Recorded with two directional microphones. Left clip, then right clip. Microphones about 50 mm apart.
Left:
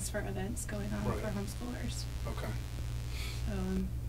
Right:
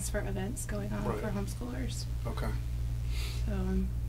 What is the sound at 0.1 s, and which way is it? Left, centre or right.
Speech, centre.